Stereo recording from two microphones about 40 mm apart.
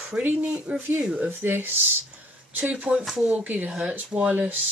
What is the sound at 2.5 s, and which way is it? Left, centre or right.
A woman's voice, right.